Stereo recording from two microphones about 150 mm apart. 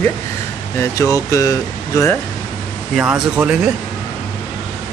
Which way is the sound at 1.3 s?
20° left (ahead or behind).